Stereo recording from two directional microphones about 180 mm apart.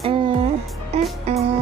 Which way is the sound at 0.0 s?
30° right (ahead or behind).